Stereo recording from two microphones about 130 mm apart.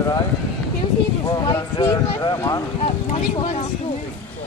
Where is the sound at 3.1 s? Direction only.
60° left (ahead or behind).